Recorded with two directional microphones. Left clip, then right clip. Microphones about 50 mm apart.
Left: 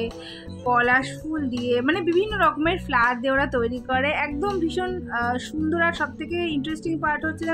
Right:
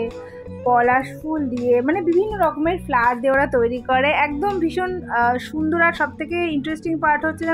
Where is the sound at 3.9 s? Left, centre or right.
Centre.